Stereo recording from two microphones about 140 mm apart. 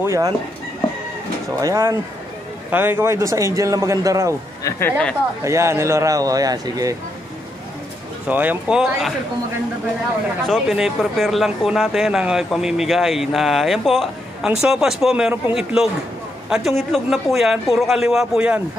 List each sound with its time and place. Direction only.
0.0 s a man's voice: 20° right (ahead or behind)
1.6 s a man's voice: 20° right (ahead or behind)
4.6 s speech: 15° left (ahead or behind)
5.4 s a man's voice: 20° right (ahead or behind)
8.3 s speech: 10° right (ahead or behind)
10.4 s speech: centre (ahead or behind)